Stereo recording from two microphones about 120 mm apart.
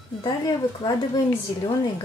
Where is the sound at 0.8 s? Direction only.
40° left (ahead or behind).